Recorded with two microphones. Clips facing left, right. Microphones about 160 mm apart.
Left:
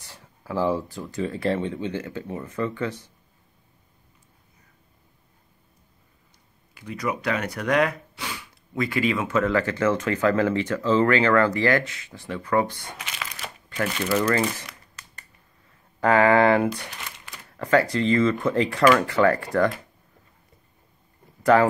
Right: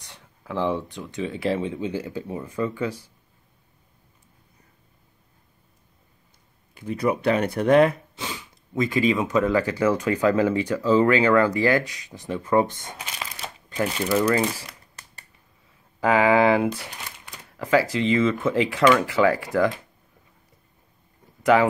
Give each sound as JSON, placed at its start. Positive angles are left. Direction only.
{"t": 0.0, "sound": "speech", "side_deg": 5}
{"t": 6.8, "sound": "speech", "side_deg": -30}
{"t": 16.0, "sound": "speech", "side_deg": -5}
{"t": 21.4, "sound": "a sound", "side_deg": 0}